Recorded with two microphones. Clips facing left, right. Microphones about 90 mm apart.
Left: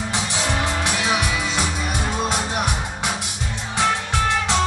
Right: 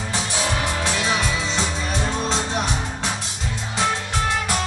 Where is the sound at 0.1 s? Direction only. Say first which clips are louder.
Right 1 dB; 20° left (ahead or behind).